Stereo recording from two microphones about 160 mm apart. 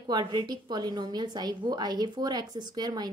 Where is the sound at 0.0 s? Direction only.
30° right (ahead or behind).